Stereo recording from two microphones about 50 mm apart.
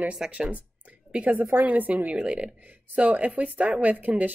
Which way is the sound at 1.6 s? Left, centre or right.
Right.